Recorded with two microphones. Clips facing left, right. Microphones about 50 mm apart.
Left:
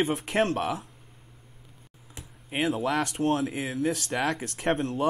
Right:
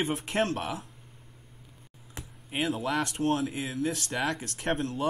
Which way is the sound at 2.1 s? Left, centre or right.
Centre.